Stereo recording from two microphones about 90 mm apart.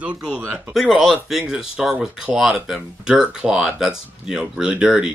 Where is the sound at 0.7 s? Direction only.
Centre (ahead or behind).